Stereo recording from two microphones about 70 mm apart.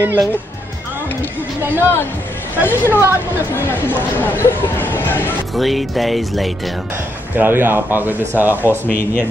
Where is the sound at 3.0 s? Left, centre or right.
Left.